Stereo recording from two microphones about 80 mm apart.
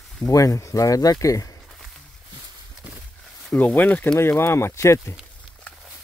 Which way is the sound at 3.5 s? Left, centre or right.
Left.